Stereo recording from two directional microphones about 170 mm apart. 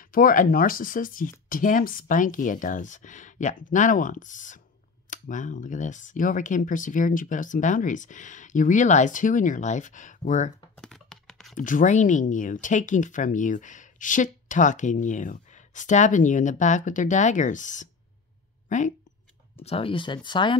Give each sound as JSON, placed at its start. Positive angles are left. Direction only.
{"t": 0.0, "sound": "speech", "side_deg": 55}
{"t": 10.8, "sound": "a sound", "side_deg": 0}
{"t": 11.5, "sound": "speech", "side_deg": 50}
{"t": 19.6, "sound": "speech", "side_deg": 35}